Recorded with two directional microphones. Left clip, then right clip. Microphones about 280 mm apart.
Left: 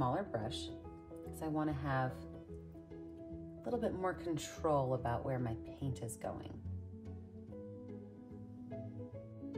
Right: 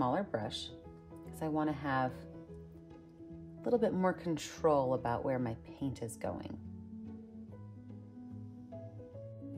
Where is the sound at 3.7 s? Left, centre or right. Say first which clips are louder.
Right 6 dB; right.